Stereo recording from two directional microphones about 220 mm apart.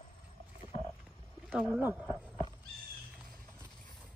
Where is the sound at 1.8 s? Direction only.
10° right (ahead or behind).